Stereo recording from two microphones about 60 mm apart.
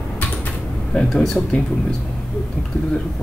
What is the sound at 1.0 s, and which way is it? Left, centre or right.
Speech, centre.